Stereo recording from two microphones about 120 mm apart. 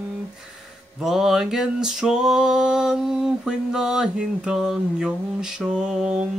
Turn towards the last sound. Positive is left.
turn(degrees=-5)  # may be behind; listen again after turning